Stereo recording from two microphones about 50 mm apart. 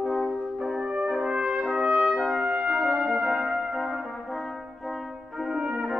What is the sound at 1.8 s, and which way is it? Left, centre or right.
Brass instrument, right.